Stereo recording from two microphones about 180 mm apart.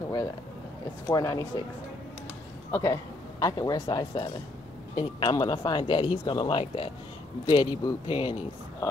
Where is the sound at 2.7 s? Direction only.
15° left (ahead or behind).